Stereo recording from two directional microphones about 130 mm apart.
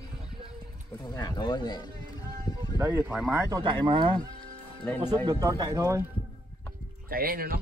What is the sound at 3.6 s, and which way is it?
Speech, 40° right (ahead or behind).